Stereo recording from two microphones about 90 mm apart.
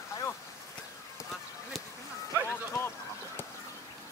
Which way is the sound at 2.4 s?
25° left (ahead or behind).